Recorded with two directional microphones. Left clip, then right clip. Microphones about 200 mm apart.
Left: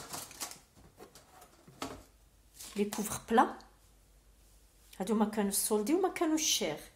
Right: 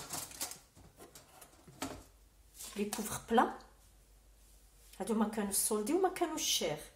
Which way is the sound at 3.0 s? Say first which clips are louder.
Left 2 dB; 50° left (ahead or behind).